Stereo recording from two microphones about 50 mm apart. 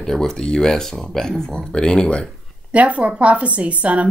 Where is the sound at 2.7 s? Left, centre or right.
Right.